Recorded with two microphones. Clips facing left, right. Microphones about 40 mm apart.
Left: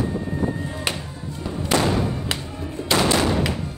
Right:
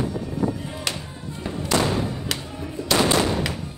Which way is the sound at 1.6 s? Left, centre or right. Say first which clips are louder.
Left 2 dB; left.